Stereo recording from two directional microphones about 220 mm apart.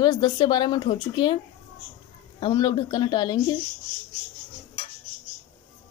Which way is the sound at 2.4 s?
20° left (ahead or behind).